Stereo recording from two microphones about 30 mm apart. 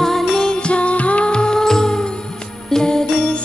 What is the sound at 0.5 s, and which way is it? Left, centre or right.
Music, left.